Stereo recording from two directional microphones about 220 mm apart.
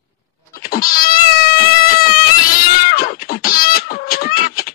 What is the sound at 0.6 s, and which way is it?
Cat, 40° left (ahead or behind).